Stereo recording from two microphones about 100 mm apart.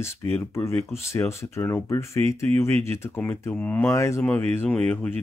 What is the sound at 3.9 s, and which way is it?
Speech, 30° left (ahead or behind).